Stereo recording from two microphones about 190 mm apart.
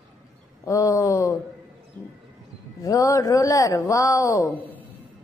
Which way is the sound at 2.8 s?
15° left (ahead or behind).